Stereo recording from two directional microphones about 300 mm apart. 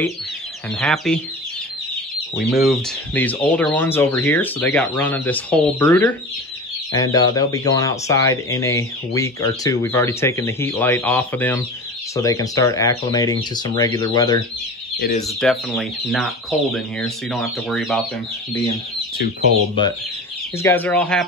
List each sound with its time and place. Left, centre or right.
0.7 s speech: centre
2.3 s speech: centre
15.0 s speech: left
15.2 s speech: centre
18.5 s speech: centre
20.5 s speech: centre